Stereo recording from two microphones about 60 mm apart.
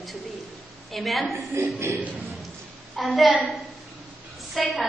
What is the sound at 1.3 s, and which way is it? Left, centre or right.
Speech, right.